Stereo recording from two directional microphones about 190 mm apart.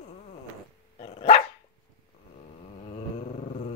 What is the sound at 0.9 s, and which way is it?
Dog, 35° left (ahead or behind).